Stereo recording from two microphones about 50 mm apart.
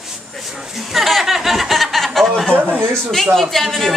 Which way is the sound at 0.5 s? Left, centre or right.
Centre.